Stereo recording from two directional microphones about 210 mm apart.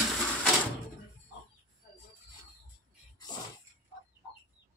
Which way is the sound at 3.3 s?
20° left (ahead or behind).